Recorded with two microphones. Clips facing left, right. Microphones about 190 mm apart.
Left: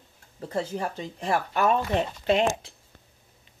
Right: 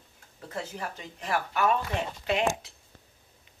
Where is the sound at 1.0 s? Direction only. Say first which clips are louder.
Left 2 dB; 30° left (ahead or behind).